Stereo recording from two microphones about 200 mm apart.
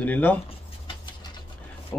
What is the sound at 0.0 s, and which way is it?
Speech, 10° left (ahead or behind).